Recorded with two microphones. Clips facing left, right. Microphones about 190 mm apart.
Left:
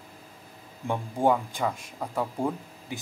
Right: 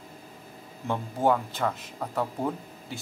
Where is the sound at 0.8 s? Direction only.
10° left (ahead or behind).